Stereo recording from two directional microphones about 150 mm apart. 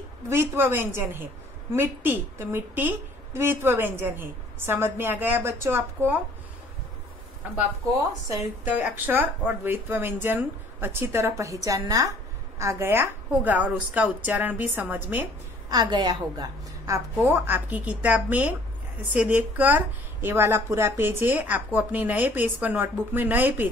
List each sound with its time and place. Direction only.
0.3 s a woman's voice: 15° right (ahead or behind)
8.6 s a woman's voice: 10° right (ahead or behind)
15.7 s a woman's voice: 30° right (ahead or behind); by 23.7 s 10° right (ahead or behind)